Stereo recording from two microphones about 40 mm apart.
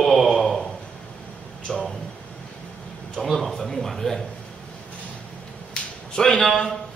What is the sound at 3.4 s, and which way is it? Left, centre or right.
Speech, centre.